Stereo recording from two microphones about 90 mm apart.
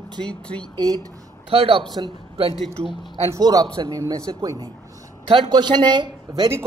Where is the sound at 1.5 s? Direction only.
90° right.